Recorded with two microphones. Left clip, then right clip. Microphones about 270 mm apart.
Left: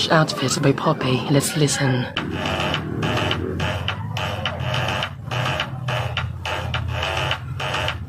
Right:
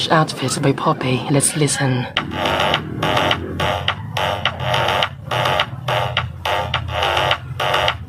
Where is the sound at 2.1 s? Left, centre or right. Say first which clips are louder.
Right 6 dB; right.